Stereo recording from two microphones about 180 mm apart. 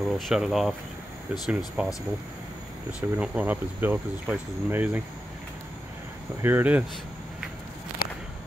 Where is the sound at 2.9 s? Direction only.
5° right (ahead or behind).